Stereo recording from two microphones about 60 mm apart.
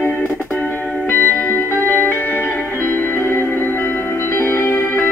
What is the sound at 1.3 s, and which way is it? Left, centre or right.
Music, left.